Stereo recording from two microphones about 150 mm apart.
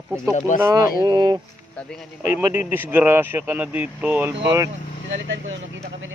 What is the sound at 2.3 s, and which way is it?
Speech, 15° right (ahead or behind).